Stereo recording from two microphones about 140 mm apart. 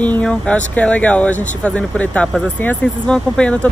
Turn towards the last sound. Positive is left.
turn(degrees=10)  # may be behind; listen again after turning